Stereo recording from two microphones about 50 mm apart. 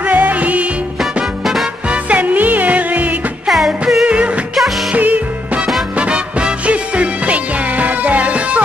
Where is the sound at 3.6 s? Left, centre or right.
Centre.